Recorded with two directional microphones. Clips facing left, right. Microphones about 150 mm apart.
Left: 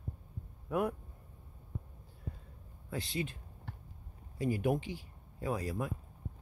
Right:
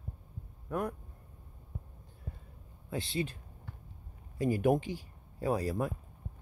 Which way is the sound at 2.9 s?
30° right (ahead or behind).